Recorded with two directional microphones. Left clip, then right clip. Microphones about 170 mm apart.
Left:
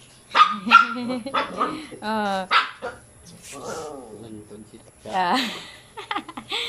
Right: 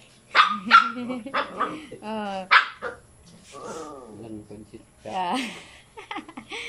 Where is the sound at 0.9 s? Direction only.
5° right (ahead or behind).